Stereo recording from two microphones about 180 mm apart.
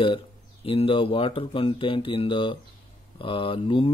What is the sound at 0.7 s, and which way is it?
Speech, 30° left (ahead or behind).